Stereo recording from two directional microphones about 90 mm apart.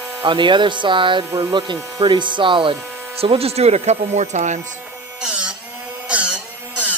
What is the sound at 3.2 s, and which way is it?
Speech, 90° right.